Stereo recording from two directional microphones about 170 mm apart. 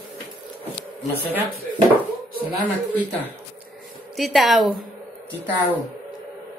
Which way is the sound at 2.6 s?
10° right (ahead or behind).